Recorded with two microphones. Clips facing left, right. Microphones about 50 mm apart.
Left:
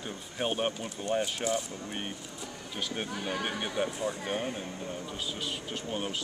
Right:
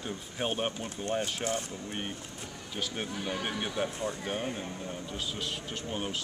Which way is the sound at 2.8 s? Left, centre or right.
Centre.